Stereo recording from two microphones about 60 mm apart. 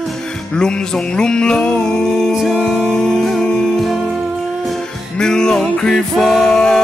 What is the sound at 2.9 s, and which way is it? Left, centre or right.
Music, centre.